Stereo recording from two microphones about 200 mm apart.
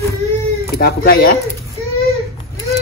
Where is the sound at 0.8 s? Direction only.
50° left (ahead or behind).